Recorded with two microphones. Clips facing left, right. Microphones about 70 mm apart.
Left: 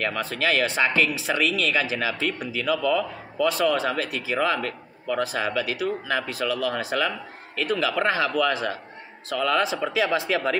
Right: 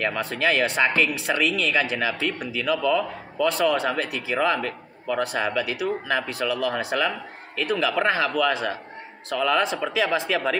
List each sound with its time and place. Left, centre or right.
0.0 s speech: centre